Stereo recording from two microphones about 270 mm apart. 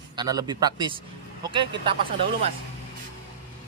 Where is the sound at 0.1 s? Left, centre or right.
Centre.